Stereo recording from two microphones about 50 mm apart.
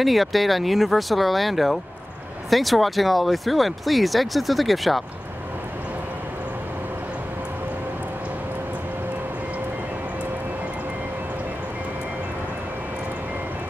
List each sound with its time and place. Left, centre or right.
0.0 s speech: centre